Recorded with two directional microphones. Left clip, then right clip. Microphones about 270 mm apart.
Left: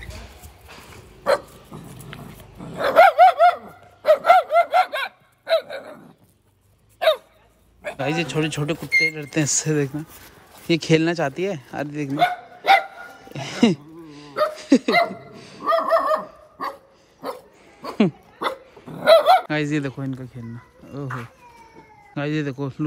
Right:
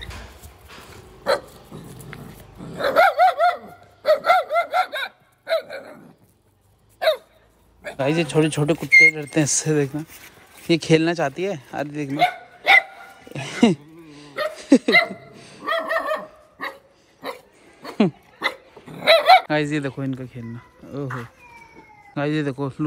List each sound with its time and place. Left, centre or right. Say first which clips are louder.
0.0 s a sound: right 2 dB; centre
0.7 s dog: right 3 dB; centre
7.0 s hiccup: left 1 dB; centre
7.8 s speech: right 2 dB; centre
13.3 s a sound: right 1 dB; centre
14.5 s laughter: right 6 dB; centre
15.3 s a sound: left 2 dB; centre
15.6 s dog: left 4 dB; centre
17.8 s dog: even; centre
18.4 s dog: even; centre
19.5 s speech: right 2 dB; centre